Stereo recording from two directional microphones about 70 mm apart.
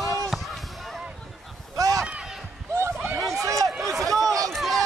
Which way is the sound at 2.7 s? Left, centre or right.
Right.